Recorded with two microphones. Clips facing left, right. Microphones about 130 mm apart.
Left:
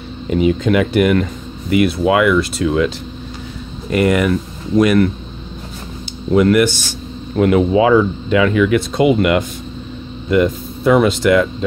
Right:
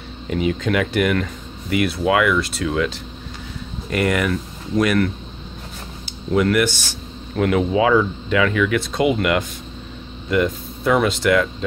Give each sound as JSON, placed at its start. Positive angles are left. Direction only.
{"t": 0.3, "sound": "speech", "side_deg": 15}
{"t": 3.9, "sound": "speech", "side_deg": 10}
{"t": 6.3, "sound": "speech", "side_deg": 20}